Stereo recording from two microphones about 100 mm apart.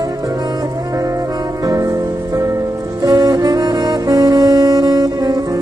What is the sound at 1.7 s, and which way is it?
Music, 35° right (ahead or behind).